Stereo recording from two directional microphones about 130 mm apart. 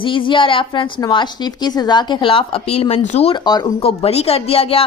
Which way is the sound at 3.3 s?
35° left (ahead or behind).